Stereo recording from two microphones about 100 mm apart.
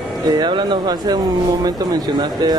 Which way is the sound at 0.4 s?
50° right (ahead or behind).